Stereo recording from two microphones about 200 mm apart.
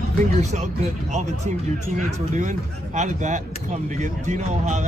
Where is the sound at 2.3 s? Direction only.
35° right (ahead or behind).